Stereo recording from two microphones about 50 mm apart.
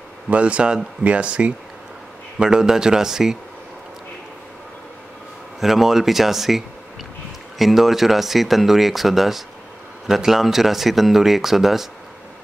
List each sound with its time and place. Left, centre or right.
0.3 s speech: right
5.6 s speech: centre